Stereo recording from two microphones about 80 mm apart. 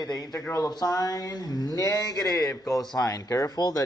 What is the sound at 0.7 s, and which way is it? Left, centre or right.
Speech, left.